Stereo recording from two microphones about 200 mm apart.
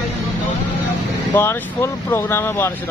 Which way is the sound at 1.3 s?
10° left (ahead or behind).